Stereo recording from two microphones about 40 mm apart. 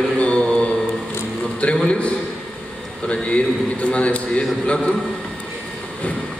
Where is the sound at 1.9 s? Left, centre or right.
Left.